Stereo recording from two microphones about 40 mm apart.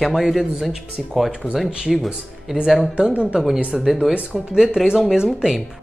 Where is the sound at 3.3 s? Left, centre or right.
Centre.